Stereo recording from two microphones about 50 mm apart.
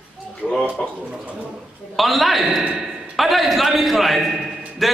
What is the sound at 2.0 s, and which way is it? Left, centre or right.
A man's voice, centre.